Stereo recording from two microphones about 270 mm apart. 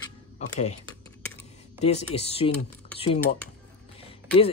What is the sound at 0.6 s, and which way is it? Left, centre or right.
Speech, left.